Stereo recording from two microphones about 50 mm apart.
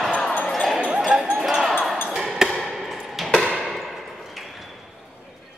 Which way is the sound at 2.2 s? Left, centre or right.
Centre.